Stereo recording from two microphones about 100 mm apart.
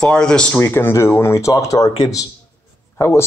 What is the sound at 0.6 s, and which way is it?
Speech, 25° left (ahead or behind).